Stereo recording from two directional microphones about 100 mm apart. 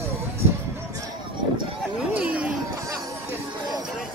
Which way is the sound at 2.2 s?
15° right (ahead or behind).